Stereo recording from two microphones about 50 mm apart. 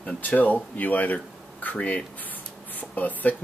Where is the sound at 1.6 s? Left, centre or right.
Left.